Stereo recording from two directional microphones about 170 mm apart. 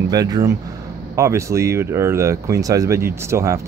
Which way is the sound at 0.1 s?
20° right (ahead or behind).